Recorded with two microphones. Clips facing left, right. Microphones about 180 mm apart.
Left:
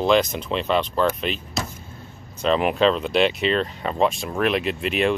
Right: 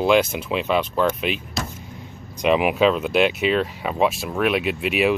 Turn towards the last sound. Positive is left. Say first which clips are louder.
# right 1 dB
turn(degrees=-5)  # may be behind; listen again after turning